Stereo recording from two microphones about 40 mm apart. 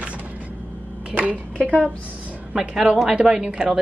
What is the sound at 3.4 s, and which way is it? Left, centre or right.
Speech, right.